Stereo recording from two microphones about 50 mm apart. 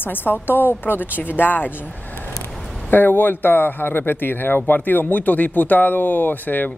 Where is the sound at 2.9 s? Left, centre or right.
Left.